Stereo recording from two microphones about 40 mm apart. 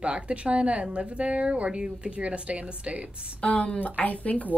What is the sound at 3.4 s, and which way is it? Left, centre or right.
Speech, left.